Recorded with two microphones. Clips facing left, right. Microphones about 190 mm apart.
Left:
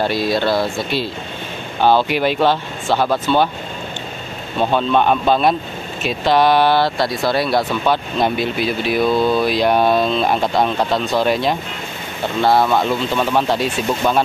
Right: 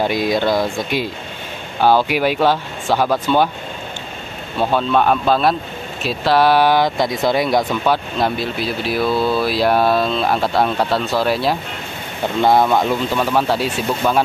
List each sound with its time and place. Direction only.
0.0 s speech: 15° right (ahead or behind)
4.6 s speech: 5° right (ahead or behind)
12.4 s speech: 15° right (ahead or behind)